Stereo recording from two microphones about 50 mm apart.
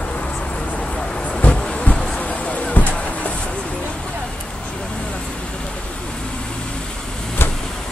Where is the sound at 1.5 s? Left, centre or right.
Centre.